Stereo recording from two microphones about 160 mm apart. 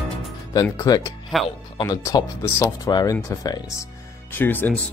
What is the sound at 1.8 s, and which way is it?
Speech, 25° left (ahead or behind).